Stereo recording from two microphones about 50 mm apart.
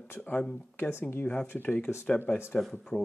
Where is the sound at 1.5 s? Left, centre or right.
Left.